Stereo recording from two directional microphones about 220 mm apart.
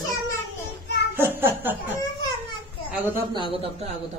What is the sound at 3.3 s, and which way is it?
Speech, 25° right (ahead or behind).